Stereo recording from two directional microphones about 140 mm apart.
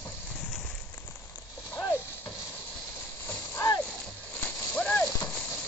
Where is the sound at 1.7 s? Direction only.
20° left (ahead or behind).